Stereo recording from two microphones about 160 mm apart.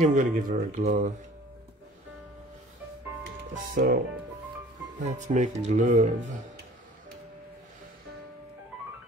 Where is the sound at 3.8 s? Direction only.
60° right (ahead or behind).